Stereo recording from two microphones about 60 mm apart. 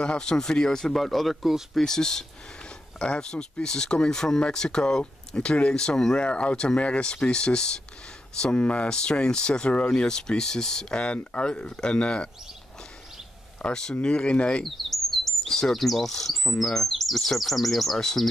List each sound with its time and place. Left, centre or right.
0.0 s speech: centre
13.6 s speech: centre
14.6 s speech: centre